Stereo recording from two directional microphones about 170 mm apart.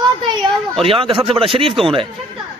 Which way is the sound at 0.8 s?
30° right (ahead or behind).